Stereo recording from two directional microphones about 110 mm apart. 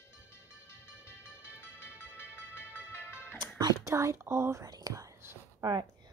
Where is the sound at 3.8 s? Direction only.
25° right (ahead or behind).